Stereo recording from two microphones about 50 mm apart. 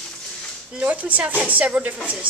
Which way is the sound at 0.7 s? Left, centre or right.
Right.